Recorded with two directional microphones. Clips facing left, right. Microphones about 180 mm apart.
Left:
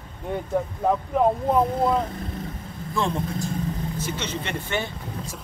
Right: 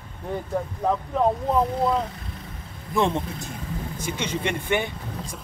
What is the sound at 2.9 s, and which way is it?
Speech, 20° right (ahead or behind).